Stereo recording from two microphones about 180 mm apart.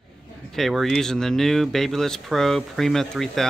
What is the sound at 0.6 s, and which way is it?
Speech, centre (ahead or behind).